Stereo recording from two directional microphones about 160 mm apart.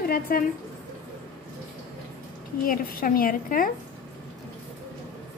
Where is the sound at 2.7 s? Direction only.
60° left (ahead or behind).